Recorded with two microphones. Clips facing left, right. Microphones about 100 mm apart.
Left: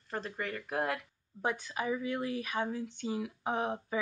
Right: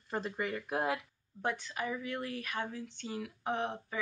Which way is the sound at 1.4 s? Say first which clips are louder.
Left 2 dB; 15° left (ahead or behind).